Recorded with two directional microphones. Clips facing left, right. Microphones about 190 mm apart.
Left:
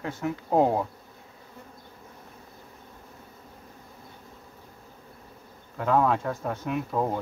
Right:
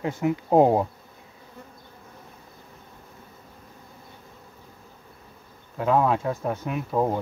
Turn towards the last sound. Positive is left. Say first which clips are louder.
# right 3 dB
turn(degrees=-15)  # may be behind; listen again after turning